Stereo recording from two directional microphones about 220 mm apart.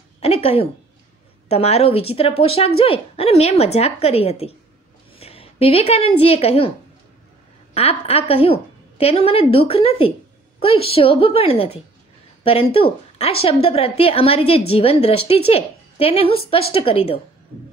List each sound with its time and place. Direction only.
0.2 s a woman's voice: 25° left (ahead or behind)
7.7 s a woman's voice: 25° left (ahead or behind)